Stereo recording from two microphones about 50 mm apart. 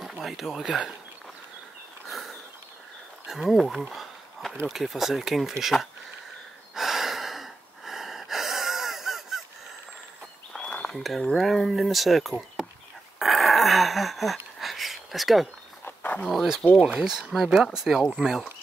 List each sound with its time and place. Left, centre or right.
0.0 s speech: centre
2.0 s a sound: centre
3.3 s speech: centre
3.9 s a sound: centre
4.6 s speech: centre
6.7 s gasp: centre
10.5 s a sound: left
11.0 s speech: centre
13.2 s a sound: centre
15.8 s walk: left
16.8 s speech: centre
17.1 s speech: centre